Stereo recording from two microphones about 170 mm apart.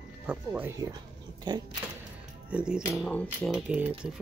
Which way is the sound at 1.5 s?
25° right (ahead or behind).